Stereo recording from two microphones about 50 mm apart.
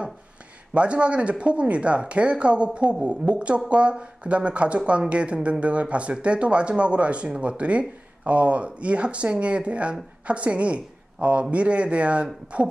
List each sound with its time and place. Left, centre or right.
0.7 s a woman's voice: right